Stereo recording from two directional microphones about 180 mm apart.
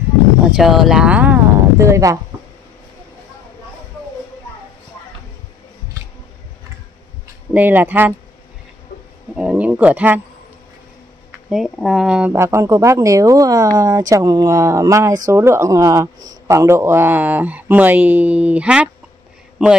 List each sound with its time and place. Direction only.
0.5 s a sound: centre (ahead or behind); by 2.1 s 15° right (ahead or behind)
7.5 s speech: 10° right (ahead or behind)
9.3 s speech: 5° right (ahead or behind)
11.4 s speech: centre (ahead or behind)